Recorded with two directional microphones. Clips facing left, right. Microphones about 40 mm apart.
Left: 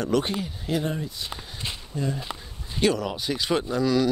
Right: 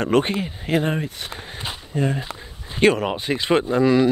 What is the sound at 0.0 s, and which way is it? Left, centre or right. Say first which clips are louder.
Speech: right 5 dB; right.